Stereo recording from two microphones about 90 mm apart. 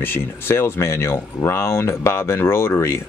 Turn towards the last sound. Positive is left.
turn(degrees=30)  # may be behind; listen again after turning